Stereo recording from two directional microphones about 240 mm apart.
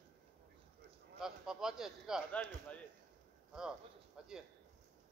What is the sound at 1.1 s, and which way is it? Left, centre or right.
Speech, centre.